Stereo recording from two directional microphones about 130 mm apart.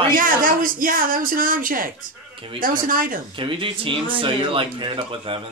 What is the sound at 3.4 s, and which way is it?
Speech, 40° right (ahead or behind).